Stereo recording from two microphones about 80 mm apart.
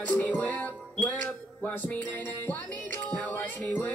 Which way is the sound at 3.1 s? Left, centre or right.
Centre.